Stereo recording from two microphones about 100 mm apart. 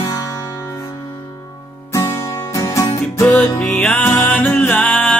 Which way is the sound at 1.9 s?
35° left (ahead or behind).